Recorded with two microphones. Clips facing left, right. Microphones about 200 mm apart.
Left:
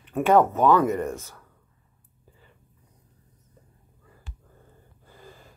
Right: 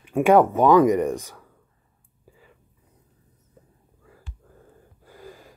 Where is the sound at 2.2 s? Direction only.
10° right (ahead or behind).